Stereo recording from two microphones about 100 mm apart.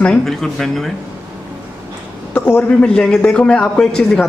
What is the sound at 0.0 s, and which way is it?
Speech, 5° left (ahead or behind).